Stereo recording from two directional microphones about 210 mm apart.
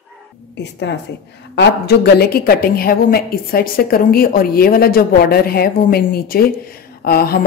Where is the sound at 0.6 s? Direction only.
55° left (ahead or behind).